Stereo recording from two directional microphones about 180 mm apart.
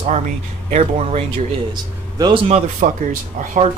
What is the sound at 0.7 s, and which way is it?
Speech, 35° right (ahead or behind).